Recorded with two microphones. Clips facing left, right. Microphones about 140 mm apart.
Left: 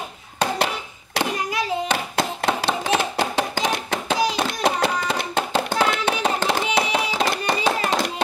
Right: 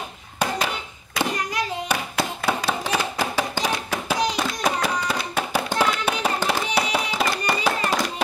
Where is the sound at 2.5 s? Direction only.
25° left (ahead or behind).